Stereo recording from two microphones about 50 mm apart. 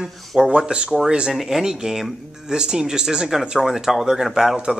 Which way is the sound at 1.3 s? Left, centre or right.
Centre.